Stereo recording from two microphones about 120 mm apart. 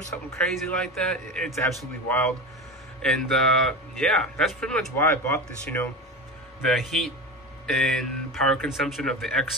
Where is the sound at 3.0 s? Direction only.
5° left (ahead or behind).